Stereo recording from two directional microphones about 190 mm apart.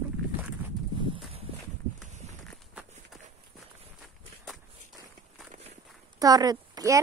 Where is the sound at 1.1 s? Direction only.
30° right (ahead or behind).